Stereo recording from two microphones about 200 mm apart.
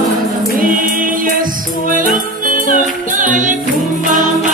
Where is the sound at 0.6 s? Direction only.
45° right (ahead or behind).